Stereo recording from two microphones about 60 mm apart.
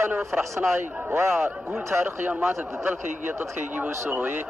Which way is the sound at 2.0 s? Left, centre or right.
Right.